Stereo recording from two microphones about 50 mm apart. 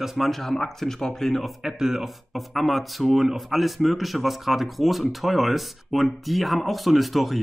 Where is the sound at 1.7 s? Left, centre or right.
Centre.